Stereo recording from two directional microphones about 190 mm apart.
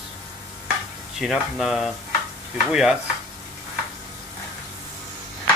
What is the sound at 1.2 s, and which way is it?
Speech, centre (ahead or behind).